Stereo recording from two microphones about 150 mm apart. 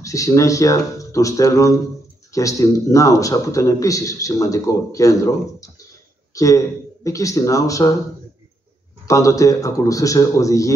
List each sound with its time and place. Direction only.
0.0 s a man's voice: 20° left (ahead or behind)
9.0 s a man's voice: 20° left (ahead or behind)